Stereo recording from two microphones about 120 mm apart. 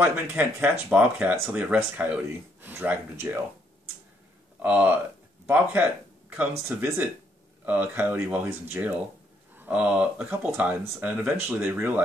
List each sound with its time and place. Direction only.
0.0 s speech: 15° right (ahead or behind)
4.6 s speech: 15° right (ahead or behind)